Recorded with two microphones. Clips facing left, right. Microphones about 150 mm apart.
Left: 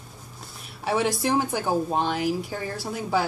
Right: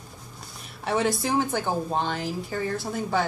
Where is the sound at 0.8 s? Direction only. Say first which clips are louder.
Left 1 dB; 10° left (ahead or behind).